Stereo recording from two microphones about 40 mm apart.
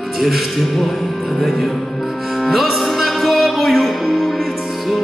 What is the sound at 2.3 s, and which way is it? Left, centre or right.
Music, centre.